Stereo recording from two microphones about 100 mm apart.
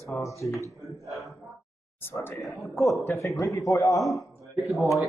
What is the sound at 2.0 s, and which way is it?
Speech, 20° left (ahead or behind).